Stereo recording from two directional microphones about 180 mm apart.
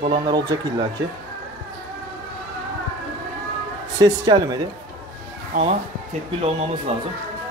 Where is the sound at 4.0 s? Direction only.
20° right (ahead or behind).